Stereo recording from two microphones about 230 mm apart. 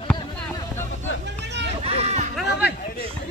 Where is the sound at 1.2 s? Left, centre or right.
Right.